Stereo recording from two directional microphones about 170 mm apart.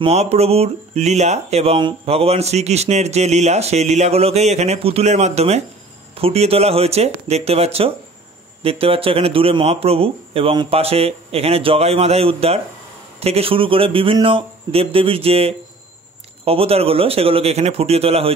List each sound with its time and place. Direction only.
0.0 s speech: 35° right (ahead or behind)